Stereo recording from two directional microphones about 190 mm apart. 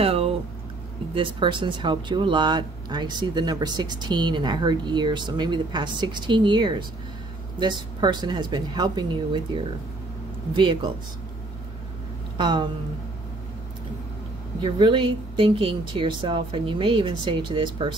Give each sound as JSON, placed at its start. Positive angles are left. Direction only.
{"t": 0.0, "sound": "a sound", "side_deg": -30}
{"t": 1.1, "sound": "speech", "side_deg": -25}
{"t": 12.4, "sound": "speech", "side_deg": -25}
{"t": 14.6, "sound": "speech", "side_deg": -25}